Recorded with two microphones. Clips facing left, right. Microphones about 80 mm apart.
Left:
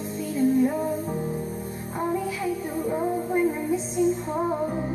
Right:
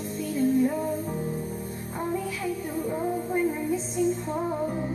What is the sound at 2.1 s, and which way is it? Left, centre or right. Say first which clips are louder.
Music: left 3 dB; centre.